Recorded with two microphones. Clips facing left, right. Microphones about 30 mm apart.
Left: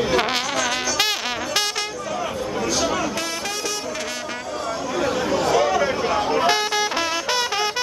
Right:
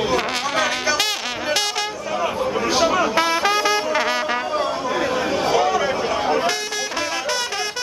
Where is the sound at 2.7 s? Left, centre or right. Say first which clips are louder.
Right 7 dB; right.